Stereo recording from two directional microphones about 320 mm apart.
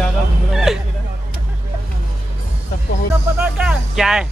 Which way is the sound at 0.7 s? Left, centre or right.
Centre.